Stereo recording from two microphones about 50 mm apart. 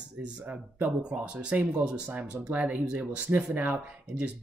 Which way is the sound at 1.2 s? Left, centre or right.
Right.